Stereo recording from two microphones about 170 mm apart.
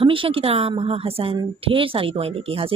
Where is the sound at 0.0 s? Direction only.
30° right (ahead or behind).